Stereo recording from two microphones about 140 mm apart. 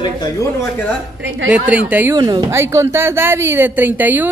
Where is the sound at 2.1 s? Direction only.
30° right (ahead or behind).